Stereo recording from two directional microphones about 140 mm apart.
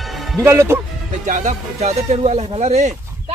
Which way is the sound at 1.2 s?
65° right (ahead or behind).